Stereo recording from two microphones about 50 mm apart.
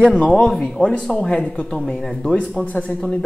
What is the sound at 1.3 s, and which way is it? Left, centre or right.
Speech, left.